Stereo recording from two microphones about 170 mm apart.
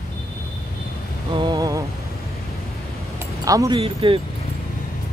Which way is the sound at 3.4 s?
20° right (ahead or behind).